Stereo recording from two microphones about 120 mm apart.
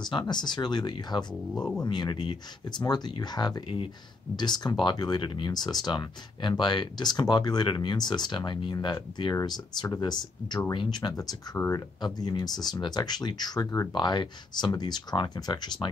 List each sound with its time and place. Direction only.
0.3 s speech: 40° left (ahead or behind)
1.5 s speech: 5° left (ahead or behind)
1.9 s speech: 35° left (ahead or behind)